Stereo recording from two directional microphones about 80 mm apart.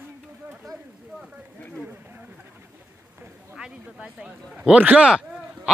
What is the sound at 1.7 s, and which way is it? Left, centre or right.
Speech, centre.